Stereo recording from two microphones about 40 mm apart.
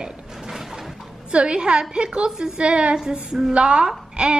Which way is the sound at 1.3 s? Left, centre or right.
Right.